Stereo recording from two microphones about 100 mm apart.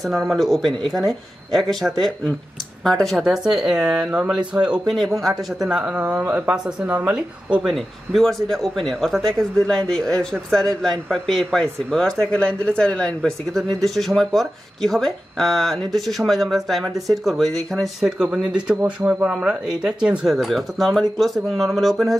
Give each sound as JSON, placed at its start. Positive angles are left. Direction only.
{"t": 0.0, "sound": "a man's voice", "side_deg": 0}
{"t": 6.9, "sound": "a woman's voice", "side_deg": -20}
{"t": 7.2, "sound": "a man's voice", "side_deg": -10}